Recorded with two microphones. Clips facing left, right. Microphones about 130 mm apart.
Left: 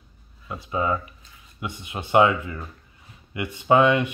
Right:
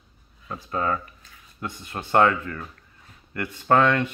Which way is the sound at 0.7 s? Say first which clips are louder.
Left 1 dB; 10° left (ahead or behind).